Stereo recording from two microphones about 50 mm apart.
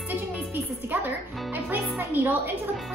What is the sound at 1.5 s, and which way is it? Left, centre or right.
A woman's voice, right.